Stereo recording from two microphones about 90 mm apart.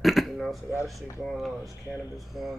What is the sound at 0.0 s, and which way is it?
Dishes, centre (ahead or behind).